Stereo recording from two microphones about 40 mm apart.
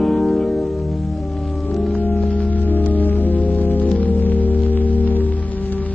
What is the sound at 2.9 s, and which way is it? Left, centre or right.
Music, left.